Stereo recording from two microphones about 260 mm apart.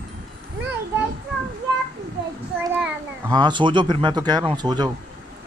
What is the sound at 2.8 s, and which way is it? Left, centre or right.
Speech, centre.